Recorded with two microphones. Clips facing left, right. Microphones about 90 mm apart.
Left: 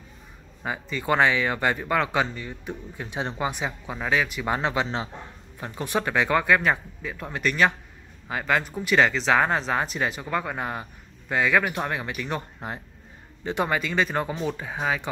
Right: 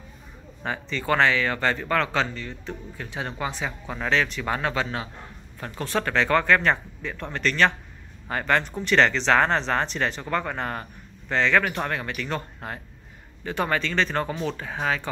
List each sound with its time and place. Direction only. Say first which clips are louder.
0.7 s speech: even; 10° left (ahead or behind)